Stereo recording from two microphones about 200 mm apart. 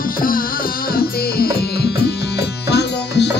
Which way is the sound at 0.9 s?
50° left (ahead or behind).